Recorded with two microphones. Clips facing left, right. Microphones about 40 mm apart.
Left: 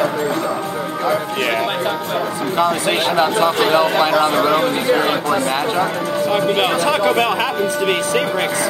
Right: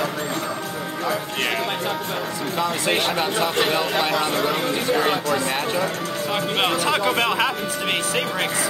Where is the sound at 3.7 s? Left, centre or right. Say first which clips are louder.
Left 7 dB; left.